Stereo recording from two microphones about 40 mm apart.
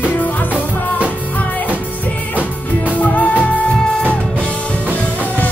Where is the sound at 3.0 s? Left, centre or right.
Left.